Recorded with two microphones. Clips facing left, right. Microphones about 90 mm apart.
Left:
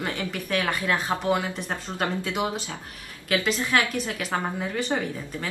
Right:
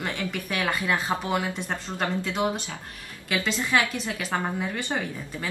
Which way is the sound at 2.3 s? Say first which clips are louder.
Right 1 dB; 20° left (ahead or behind).